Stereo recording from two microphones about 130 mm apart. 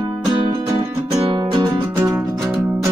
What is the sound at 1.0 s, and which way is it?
Music, 25° right (ahead or behind).